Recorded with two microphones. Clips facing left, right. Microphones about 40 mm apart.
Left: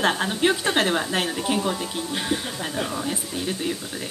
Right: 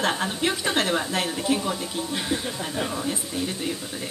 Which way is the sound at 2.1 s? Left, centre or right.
Centre.